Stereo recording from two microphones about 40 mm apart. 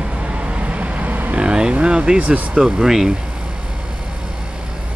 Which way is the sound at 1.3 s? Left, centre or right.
Right.